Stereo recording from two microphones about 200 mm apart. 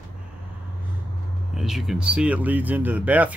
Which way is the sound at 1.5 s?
Centre (ahead or behind).